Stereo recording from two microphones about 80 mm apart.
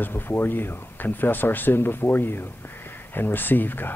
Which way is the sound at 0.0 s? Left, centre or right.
Left.